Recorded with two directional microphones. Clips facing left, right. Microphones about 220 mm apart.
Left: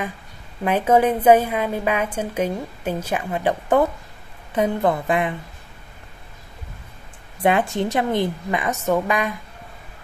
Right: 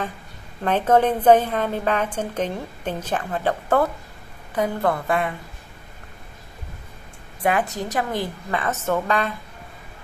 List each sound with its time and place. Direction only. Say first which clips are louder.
0.7 s a woman's voice: left 1 dB; 10° left (ahead or behind)
7.4 s a woman's voice: left 3 dB; 25° left (ahead or behind)